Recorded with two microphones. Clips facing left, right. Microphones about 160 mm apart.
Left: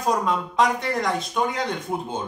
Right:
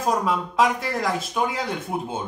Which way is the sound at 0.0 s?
5° right (ahead or behind).